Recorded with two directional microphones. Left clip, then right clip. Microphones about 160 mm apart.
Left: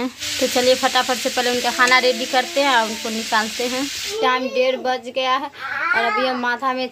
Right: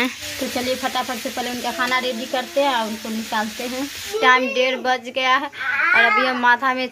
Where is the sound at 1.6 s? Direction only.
20° left (ahead or behind).